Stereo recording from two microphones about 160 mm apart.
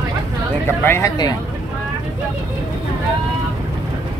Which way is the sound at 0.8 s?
15° left (ahead or behind).